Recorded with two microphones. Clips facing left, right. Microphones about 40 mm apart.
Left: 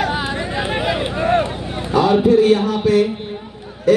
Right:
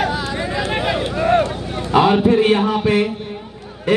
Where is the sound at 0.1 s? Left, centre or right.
Left.